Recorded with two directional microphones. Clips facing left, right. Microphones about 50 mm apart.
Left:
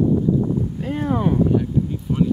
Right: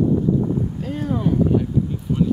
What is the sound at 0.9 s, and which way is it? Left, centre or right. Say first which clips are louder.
Speech: left 3 dB; left.